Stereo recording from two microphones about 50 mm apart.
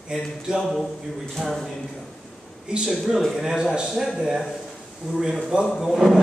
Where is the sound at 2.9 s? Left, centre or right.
Centre.